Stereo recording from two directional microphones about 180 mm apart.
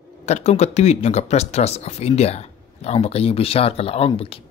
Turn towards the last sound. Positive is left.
turn(degrees=30)  # may be behind; listen again after turning